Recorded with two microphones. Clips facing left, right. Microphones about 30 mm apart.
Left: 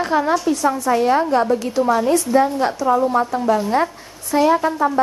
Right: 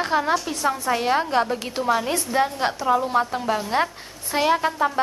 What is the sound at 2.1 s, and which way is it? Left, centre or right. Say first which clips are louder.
A woman's voice: left 6 dB; right.